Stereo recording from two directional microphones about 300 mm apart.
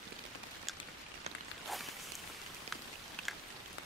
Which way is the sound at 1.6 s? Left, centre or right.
Centre.